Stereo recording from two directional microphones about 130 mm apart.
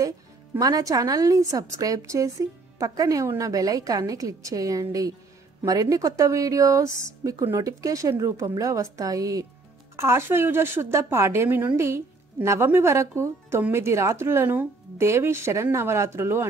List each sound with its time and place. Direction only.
0.6 s a woman's voice: 30° right (ahead or behind)